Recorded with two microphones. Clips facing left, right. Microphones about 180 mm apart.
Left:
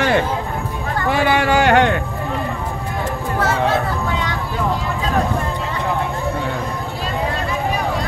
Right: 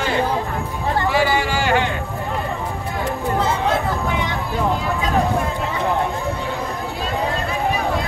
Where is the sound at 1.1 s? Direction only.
60° left (ahead or behind).